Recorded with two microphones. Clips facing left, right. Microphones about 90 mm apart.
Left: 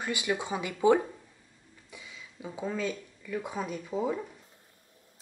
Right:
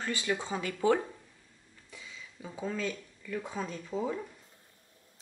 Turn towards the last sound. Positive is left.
turn(degrees=10)  # may be behind; listen again after turning